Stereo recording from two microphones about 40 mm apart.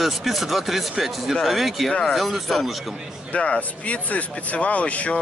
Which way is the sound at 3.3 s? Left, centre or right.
Left.